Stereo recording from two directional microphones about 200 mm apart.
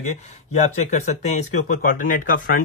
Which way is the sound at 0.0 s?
35° left (ahead or behind).